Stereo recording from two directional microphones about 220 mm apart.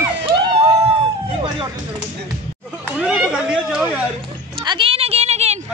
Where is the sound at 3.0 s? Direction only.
5° right (ahead or behind).